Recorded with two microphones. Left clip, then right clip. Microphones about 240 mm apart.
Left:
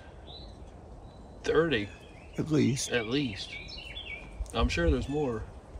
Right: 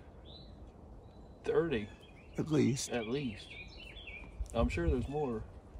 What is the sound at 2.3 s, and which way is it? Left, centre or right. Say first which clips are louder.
Speech: left 4 dB; centre.